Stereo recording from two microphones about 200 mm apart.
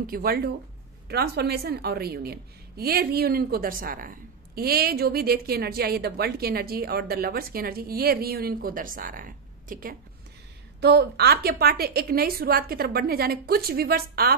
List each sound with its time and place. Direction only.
0.0 s a woman's voice: 45° right (ahead or behind)
10.8 s a woman's voice: 55° right (ahead or behind)